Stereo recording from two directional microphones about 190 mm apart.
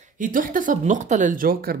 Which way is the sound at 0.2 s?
45° right (ahead or behind).